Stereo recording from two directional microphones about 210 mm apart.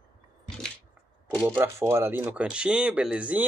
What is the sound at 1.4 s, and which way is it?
Speech, 10° right (ahead or behind).